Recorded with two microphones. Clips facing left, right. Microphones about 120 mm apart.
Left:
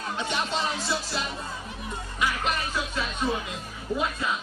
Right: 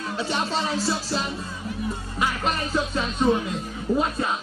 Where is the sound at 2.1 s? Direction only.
40° right (ahead or behind).